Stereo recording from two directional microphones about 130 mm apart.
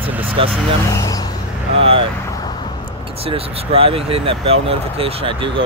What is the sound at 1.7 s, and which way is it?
Speech, 45° right (ahead or behind).